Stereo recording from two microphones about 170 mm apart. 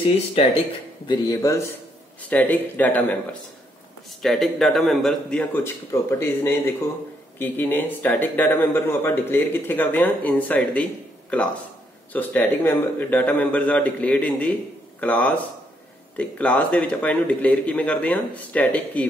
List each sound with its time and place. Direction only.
1.0 s speech: 25° left (ahead or behind)
2.2 s a man's voice: 10° left (ahead or behind)
4.2 s a man's voice: centre (ahead or behind)